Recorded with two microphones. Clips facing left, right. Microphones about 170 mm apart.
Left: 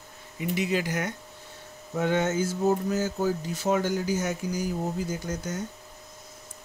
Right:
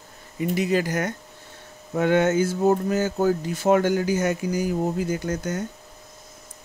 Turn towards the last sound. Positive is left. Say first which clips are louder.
# right 6 dB
turn(degrees=-60)  # may be behind; listen again after turning